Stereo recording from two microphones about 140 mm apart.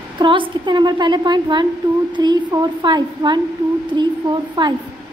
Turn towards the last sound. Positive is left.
turn(degrees=-30)  # may be behind; listen again after turning